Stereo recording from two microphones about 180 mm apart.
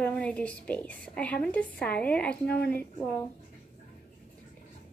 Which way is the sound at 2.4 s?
65° left (ahead or behind).